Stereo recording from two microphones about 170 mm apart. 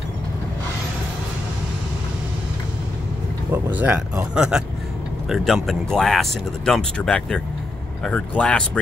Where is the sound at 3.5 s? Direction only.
10° right (ahead or behind).